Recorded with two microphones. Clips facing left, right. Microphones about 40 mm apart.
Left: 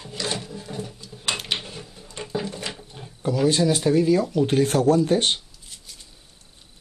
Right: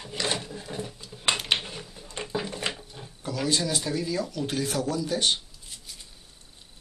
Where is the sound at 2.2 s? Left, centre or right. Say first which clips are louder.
Left 2 dB; centre.